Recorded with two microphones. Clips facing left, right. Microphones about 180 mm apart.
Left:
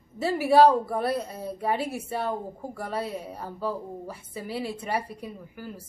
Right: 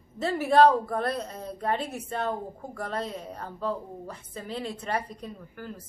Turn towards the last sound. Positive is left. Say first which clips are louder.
# left 1 dB
turn(degrees=10)  # may be behind; listen again after turning